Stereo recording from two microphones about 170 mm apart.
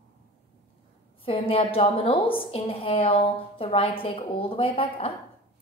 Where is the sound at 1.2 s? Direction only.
35° left (ahead or behind).